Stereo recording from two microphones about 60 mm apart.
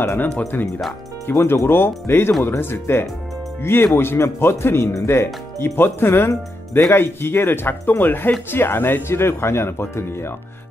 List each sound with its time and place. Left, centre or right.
0.0 s speech: left
9.1 s speech: left